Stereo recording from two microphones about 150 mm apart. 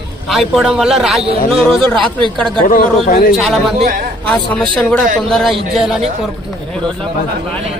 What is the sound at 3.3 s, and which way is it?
Speech, centre (ahead or behind).